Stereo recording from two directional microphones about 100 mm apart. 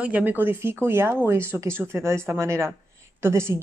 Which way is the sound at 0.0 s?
15° right (ahead or behind).